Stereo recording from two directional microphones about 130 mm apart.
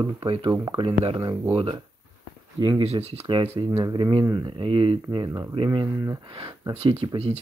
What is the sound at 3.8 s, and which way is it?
Speech, 35° right (ahead or behind).